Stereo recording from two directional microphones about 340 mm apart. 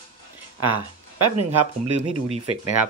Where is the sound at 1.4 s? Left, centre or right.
Right.